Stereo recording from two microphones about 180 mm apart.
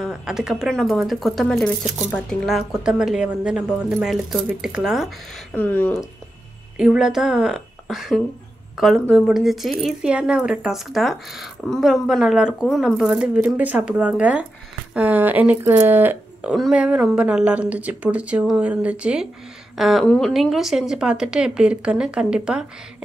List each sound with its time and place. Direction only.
0.0 s speech: 5° right (ahead or behind)
5.5 s speech: 10° left (ahead or behind)
6.8 s speech: 5° right (ahead or behind)